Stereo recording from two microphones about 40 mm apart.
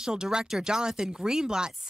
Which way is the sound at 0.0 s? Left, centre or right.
Centre.